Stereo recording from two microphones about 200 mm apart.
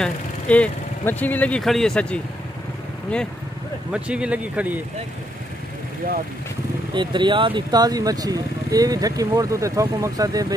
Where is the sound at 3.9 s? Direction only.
5° right (ahead or behind).